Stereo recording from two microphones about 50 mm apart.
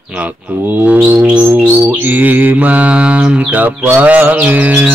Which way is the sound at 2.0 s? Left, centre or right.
Right.